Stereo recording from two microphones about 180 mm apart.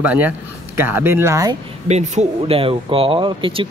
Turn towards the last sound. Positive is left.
turn(degrees=-30)  # may be behind; listen again after turning